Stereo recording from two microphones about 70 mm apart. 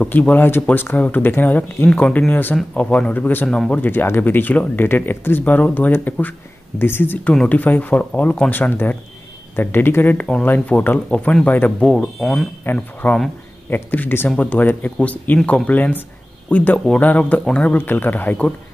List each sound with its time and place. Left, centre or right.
0.3 s speech: left
1.9 s speech: centre
3.4 s speech: centre
3.7 s speech: left
11.8 s speech: centre
12.7 s speech: left
13.0 s speech: left
17.7 s speech: left